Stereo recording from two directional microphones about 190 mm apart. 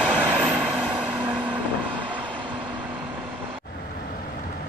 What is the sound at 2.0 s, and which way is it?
Vehicle, 25° right (ahead or behind).